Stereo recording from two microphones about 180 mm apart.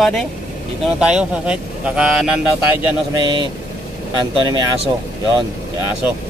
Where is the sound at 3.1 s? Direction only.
25° right (ahead or behind).